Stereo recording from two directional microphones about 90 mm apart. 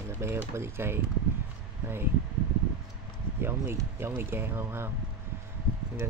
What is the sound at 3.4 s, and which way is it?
Speech, 30° right (ahead or behind).